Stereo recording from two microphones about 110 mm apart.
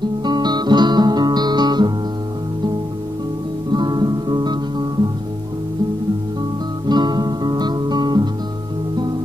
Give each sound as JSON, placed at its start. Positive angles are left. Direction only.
{"t": 0.2, "sound": "guitar", "side_deg": -40}
{"t": 3.7, "sound": "music", "side_deg": -40}
{"t": 6.9, "sound": "music", "side_deg": -40}